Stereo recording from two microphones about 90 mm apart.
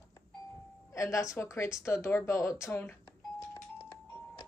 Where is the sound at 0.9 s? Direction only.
35° left (ahead or behind).